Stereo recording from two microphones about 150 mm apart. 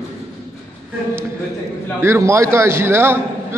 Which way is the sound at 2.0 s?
15° right (ahead or behind).